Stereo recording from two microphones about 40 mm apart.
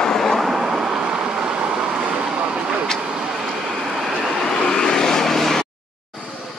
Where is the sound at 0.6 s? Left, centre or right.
Centre.